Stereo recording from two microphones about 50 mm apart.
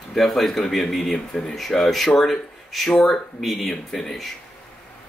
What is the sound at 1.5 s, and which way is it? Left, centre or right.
Speech, centre.